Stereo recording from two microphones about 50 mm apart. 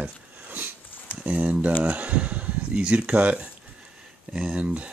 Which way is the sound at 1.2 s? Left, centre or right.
Right.